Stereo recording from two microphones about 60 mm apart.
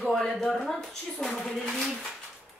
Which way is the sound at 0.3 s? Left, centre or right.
Centre.